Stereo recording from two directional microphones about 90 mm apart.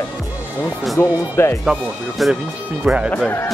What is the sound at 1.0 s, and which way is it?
Speech, 25° left (ahead or behind).